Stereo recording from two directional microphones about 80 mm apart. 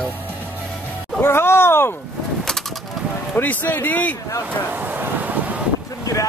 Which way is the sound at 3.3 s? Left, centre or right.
Left.